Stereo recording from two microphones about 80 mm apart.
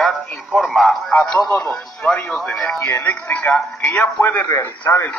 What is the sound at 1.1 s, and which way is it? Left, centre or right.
Speech, centre.